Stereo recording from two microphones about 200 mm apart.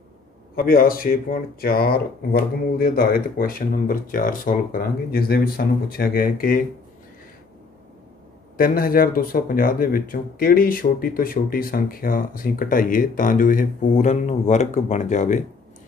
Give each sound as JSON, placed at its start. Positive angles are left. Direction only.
{"t": 0.6, "sound": "speech", "side_deg": 45}
{"t": 8.5, "sound": "speech", "side_deg": 45}